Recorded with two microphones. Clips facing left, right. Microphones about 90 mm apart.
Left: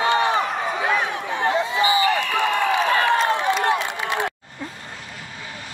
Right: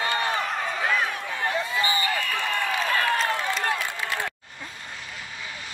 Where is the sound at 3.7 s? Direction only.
20° left (ahead or behind).